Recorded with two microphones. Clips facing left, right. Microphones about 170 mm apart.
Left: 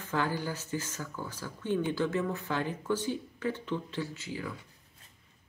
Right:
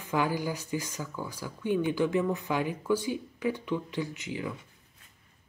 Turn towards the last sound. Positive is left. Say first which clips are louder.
# right 3 dB
turn(degrees=-20)  # may be behind; listen again after turning